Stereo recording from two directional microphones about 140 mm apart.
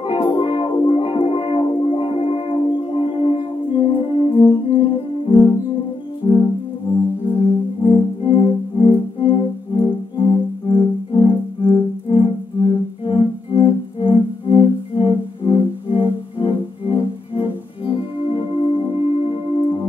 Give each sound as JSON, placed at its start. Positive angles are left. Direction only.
{"t": 0.0, "sound": "music", "side_deg": 40}
{"t": 7.8, "sound": "organ", "side_deg": 40}
{"t": 13.0, "sound": "music", "side_deg": 40}